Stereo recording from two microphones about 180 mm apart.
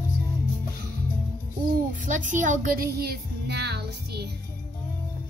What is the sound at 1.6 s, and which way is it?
Speech, 45° right (ahead or behind).